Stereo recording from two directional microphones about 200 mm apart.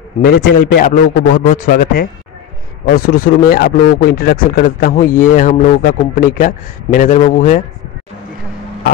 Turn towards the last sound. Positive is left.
turn(degrees=40)  # may be behind; listen again after turning